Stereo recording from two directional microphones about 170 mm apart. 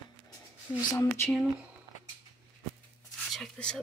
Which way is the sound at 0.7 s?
15° left (ahead or behind).